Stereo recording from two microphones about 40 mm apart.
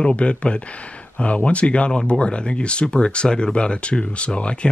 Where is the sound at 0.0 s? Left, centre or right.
Left.